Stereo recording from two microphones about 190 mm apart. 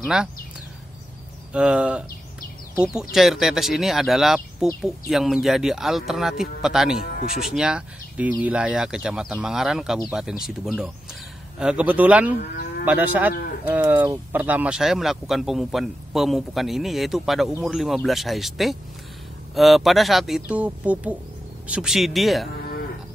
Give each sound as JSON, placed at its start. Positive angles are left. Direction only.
{"t": 0.0, "sound": "speech", "side_deg": -5}
{"t": 1.5, "sound": "a man's voice", "side_deg": -5}
{"t": 12.4, "sound": "moo", "side_deg": 50}
{"t": 12.8, "sound": "a man's voice", "side_deg": -10}